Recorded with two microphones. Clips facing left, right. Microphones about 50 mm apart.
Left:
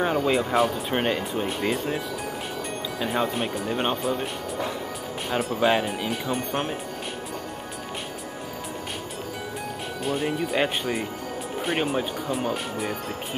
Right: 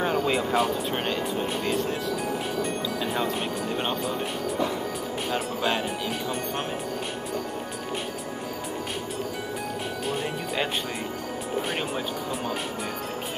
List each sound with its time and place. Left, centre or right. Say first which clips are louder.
0.0 s speech: left 2 dB; centre
0.9 s speech: left 3 dB; centre
1.3 s speech: left 1 dB; centre
3.0 s speech: left 5 dB; centre
5.3 s speech: left 6 dB; centre
10.0 s speech: left 6 dB; centre
11.6 s speech: left 4 dB; centre